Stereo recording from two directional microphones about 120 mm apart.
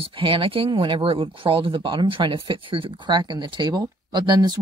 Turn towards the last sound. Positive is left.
turn(degrees=-35)  # may be behind; listen again after turning